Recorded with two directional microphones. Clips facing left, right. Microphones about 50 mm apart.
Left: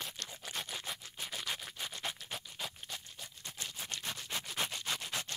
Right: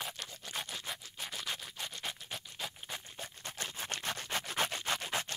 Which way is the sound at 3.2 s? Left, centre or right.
Right.